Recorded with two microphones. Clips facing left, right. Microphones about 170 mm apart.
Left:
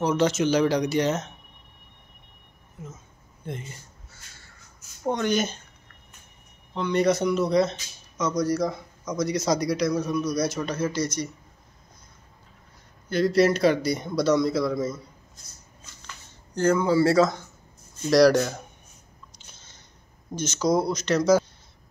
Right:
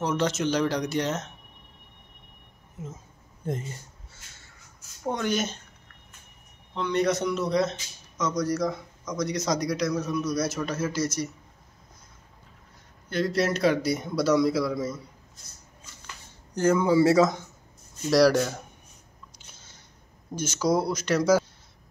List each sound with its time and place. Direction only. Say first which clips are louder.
0.0 s speech: left 4 dB; centre (ahead or behind)
2.8 s speech: right 2 dB; 25° right (ahead or behind)
3.4 s speech: right 4 dB; 40° right (ahead or behind)
5.0 s speech: left 3 dB; centre (ahead or behind)
6.7 s speech: left 3 dB; centre (ahead or behind)
13.1 s speech: left 5 dB; centre (ahead or behind)
16.5 s speech: even; 15° right (ahead or behind)
18.1 s speech: left 2 dB; 5° right (ahead or behind)
19.3 s a sound: even; 10° right (ahead or behind)
20.3 s speech: left 1 dB; 10° right (ahead or behind)